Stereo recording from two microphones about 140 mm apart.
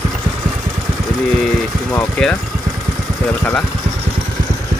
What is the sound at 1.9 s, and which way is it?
Speech, 10° left (ahead or behind).